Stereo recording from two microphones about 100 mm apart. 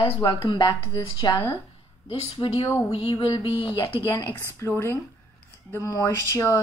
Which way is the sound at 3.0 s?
45° left (ahead or behind).